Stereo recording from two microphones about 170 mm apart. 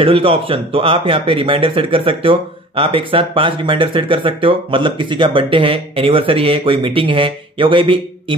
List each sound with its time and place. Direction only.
0.0 s speech: 35° right (ahead or behind)